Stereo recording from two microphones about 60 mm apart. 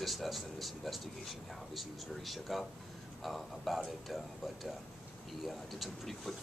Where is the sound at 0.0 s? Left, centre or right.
Centre.